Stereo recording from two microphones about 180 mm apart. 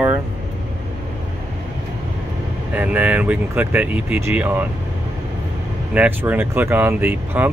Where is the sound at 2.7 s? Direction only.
10° right (ahead or behind).